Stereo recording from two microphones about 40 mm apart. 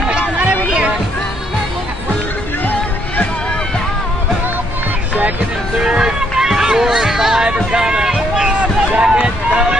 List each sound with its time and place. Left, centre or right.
0.7 s music: right
2.6 s music: left
5.8 s a sound: centre
7.5 s speech: right
8.5 s a sound: right
9.0 s run: right